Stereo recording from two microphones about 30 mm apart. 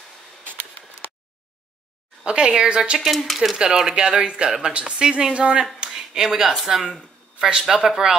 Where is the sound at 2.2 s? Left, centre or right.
Right.